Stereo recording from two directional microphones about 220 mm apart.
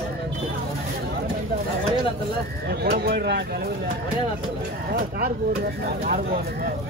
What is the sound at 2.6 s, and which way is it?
Speech, 45° right (ahead or behind).